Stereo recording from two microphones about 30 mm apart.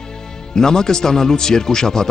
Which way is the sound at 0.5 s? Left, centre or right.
Left.